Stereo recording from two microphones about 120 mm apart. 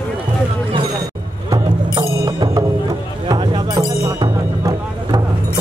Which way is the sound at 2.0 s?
30° right (ahead or behind).